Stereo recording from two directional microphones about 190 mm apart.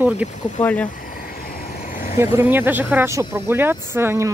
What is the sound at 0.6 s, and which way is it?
Speech, 10° left (ahead or behind).